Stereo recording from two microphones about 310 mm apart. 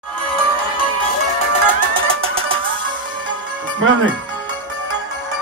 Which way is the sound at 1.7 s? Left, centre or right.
Centre.